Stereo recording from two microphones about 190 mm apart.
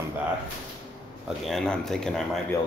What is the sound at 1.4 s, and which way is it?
Speech, 5° left (ahead or behind).